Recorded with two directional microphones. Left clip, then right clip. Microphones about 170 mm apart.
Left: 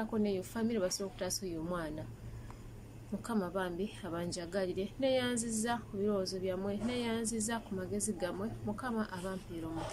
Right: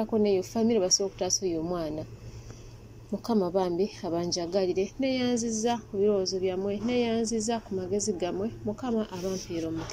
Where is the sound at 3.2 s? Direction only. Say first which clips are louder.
Right 10 dB; 20° right (ahead or behind).